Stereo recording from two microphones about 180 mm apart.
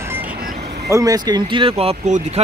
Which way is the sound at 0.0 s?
10° right (ahead or behind).